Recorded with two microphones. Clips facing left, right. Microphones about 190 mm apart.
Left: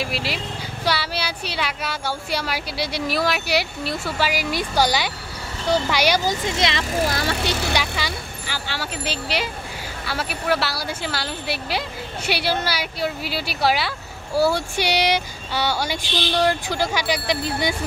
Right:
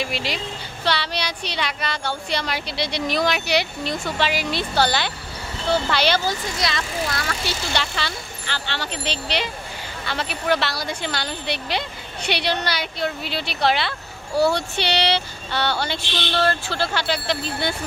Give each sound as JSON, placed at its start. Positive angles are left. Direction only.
{"t": 0.0, "sound": "a woman's voice", "side_deg": 5}
{"t": 7.7, "sound": "speech", "side_deg": 10}